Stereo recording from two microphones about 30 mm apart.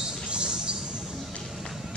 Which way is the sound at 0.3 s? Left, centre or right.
Right.